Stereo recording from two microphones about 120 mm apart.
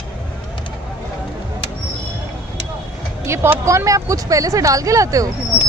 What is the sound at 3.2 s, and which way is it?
Speech, 25° right (ahead or behind).